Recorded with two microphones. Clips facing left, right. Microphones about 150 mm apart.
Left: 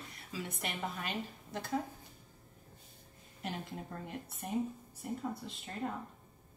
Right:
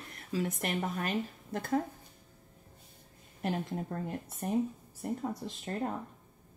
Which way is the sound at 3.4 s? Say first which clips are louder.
Right 7 dB; 45° right (ahead or behind).